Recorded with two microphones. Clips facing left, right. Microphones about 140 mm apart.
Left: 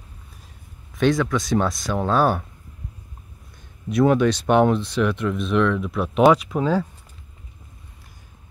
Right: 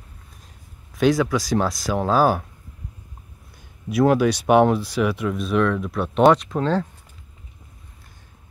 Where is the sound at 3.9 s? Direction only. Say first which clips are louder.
Even; 5° right (ahead or behind).